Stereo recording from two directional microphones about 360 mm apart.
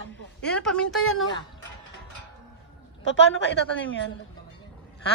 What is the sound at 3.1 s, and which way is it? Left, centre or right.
Speech, left.